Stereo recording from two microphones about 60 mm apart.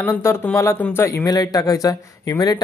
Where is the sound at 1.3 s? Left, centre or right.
Left.